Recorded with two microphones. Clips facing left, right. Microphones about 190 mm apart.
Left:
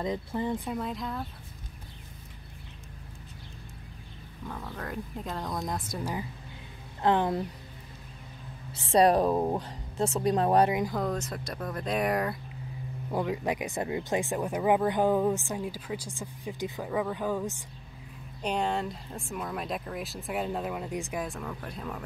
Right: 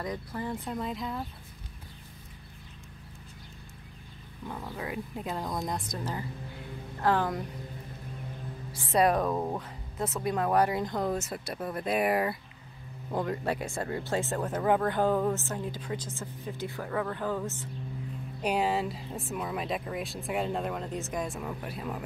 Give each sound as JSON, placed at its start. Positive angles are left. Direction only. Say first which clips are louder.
{"t": 0.0, "sound": "speech", "louder": "left 4 dB", "side_deg": 25}
{"t": 0.7, "sound": "speech", "louder": "left 1 dB", "side_deg": 0}
{"t": 4.5, "sound": "speech", "louder": "right 1 dB", "side_deg": -10}
{"t": 7.0, "sound": "speech", "louder": "left 2 dB", "side_deg": 20}
{"t": 8.7, "sound": "speech", "louder": "left 3 dB", "side_deg": 30}
{"t": 10.9, "sound": "speech", "louder": "even", "side_deg": -5}
{"t": 13.1, "sound": "speech", "louder": "left 1 dB", "side_deg": 10}
{"t": 18.4, "sound": "speech", "louder": "right 1 dB", "side_deg": -5}
{"t": 21.4, "sound": "speech", "louder": "right 1 dB", "side_deg": -10}